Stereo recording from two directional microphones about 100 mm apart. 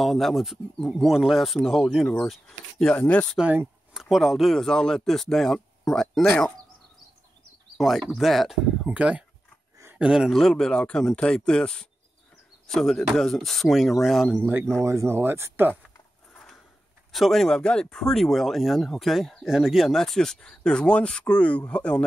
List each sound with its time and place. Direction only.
0.0 s speech: centre (ahead or behind)
3.9 s speech: centre (ahead or behind)
7.7 s a sound: centre (ahead or behind)
8.0 s speech: centre (ahead or behind)
8.8 s speech: 15° right (ahead or behind)
14.4 s speech: 20° right (ahead or behind)
17.1 s speech: centre (ahead or behind)